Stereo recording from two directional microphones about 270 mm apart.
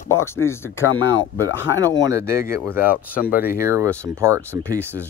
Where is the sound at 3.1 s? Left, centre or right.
Left.